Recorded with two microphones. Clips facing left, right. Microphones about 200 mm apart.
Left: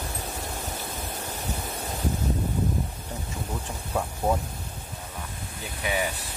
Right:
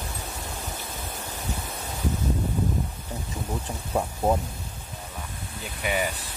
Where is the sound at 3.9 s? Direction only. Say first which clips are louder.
Right 2 dB; 20° right (ahead or behind).